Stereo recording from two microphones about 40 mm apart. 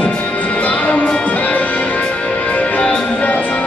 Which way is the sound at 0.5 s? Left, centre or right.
Left.